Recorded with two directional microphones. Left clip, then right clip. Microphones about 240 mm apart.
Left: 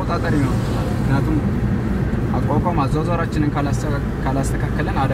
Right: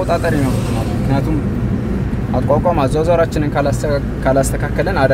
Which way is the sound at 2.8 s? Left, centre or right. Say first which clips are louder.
Right 8 dB; right.